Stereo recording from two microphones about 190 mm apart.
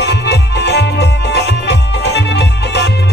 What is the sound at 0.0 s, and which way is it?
Music, 65° left (ahead or behind).